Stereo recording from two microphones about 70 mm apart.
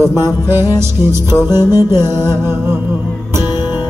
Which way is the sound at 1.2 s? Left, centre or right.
Left.